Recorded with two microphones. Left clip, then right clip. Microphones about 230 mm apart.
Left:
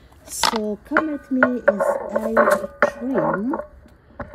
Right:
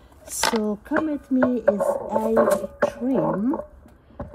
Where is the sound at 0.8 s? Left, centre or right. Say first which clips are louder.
Left 3 dB; centre.